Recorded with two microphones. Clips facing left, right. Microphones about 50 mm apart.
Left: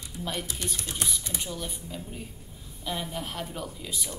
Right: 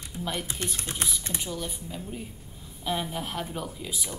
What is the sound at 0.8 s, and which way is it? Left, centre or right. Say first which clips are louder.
Speech: right 1 dB; right.